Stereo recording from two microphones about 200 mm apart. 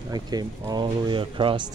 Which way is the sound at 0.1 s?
20° right (ahead or behind).